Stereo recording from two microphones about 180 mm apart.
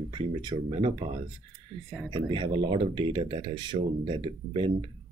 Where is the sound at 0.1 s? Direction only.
25° right (ahead or behind).